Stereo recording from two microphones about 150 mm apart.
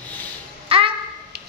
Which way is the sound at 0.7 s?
40° right (ahead or behind).